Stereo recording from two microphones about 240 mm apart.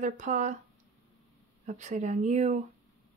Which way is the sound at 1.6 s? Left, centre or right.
Right.